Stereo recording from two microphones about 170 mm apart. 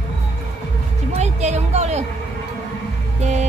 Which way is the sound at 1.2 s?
40° right (ahead or behind).